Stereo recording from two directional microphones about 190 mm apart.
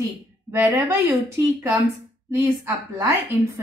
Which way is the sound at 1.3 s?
15° right (ahead or behind).